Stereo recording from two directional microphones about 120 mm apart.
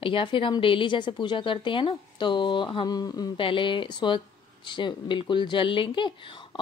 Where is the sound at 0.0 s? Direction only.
45° left (ahead or behind).